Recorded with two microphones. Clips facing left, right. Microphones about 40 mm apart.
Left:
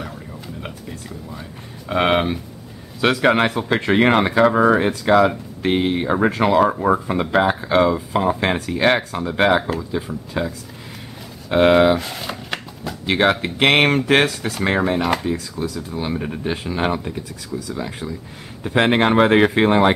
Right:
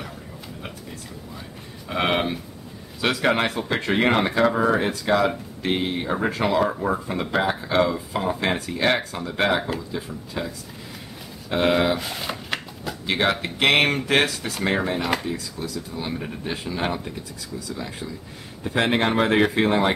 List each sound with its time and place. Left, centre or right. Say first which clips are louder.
1.9 s speech: left 5 dB; left
11.5 s speech: left 7 dB; left
12.0 s shuffling cards: left 1 dB; centre
13.0 s speech: left 5 dB; left
15.0 s speech: left 4 dB; centre
15.3 s speech: left 5 dB; left